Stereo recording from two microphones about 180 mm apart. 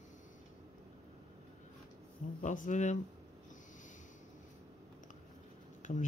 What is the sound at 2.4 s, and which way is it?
Speech, 45° left (ahead or behind).